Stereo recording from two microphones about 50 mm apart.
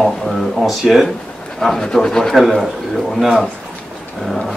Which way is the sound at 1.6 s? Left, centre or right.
Centre.